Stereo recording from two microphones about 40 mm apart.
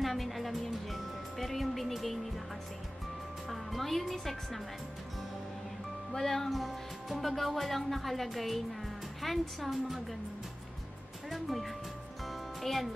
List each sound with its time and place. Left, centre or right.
0.0 s music: centre
3.4 s a woman's voice: centre
6.1 s speech: centre
11.2 s music: centre